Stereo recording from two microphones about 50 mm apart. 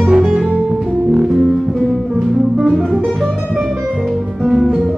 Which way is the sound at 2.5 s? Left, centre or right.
Centre.